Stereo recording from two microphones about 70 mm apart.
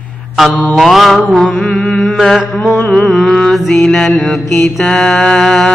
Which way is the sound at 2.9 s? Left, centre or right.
Centre.